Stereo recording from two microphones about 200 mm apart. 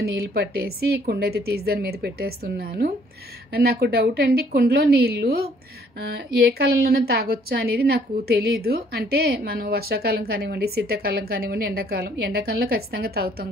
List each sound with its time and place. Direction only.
0.0 s a woman's voice: 50° right (ahead or behind)